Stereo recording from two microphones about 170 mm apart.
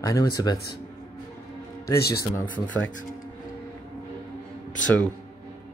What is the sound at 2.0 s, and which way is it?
Speech, 65° left (ahead or behind).